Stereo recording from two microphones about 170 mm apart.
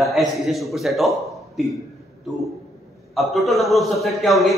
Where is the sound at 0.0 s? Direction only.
Centre (ahead or behind).